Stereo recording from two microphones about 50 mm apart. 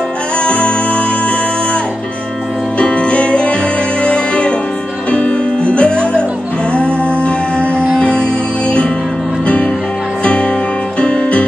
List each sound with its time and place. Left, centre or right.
0.4 s music: left
2.8 s music: left
10.2 s music: left